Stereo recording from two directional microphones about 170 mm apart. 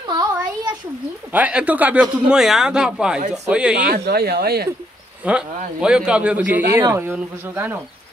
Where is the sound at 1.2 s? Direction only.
10° right (ahead or behind).